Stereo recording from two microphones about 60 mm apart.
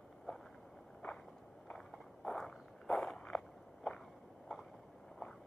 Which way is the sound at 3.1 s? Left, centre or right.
Centre.